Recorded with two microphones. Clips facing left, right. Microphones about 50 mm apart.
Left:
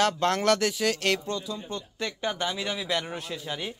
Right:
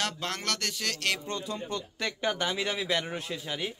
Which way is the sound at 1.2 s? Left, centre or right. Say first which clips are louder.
Left 2 dB; right.